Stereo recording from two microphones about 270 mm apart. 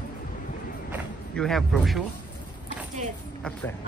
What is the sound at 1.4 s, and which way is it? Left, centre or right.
Speech, centre.